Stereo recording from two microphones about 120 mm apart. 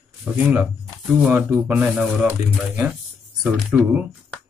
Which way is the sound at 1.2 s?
15° right (ahead or behind).